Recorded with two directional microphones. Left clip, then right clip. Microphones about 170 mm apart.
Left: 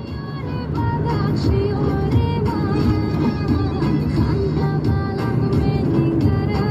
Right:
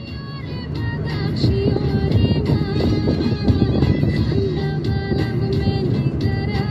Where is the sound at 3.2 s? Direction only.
20° left (ahead or behind).